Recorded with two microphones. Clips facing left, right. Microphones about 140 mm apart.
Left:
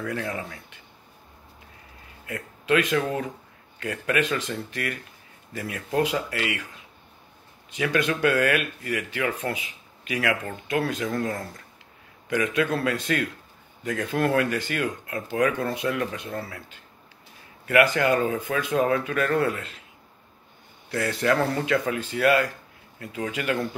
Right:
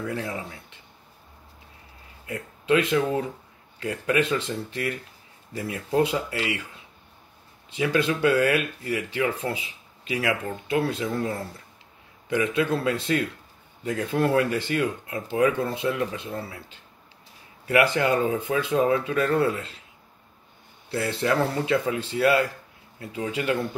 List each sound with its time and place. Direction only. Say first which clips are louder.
0.0 s speech: even; 25° right (ahead or behind)
2.2 s speech: right 2 dB; 30° right (ahead or behind)
7.7 s speech: right 1 dB; 30° right (ahead or behind)
12.3 s speech: right 1 dB; 30° right (ahead or behind)
20.9 s speech: left 1 dB; 25° right (ahead or behind)